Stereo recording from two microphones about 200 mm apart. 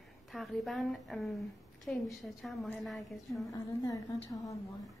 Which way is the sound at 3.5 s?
20° left (ahead or behind).